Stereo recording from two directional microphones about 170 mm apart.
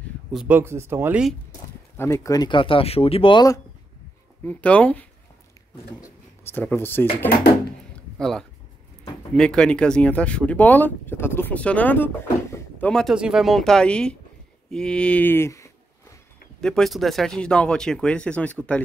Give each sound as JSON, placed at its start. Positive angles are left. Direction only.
{"t": 0.3, "sound": "speech", "side_deg": -5}
{"t": 2.0, "sound": "speech", "side_deg": 15}
{"t": 4.5, "sound": "speech", "side_deg": 10}
{"t": 16.6, "sound": "speech", "side_deg": 5}